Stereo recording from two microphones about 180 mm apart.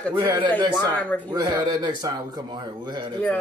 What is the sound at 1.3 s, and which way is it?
Speech, 20° right (ahead or behind).